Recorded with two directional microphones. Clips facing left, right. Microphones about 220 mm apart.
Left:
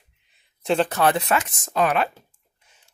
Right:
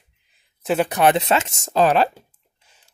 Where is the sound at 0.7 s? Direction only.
10° right (ahead or behind).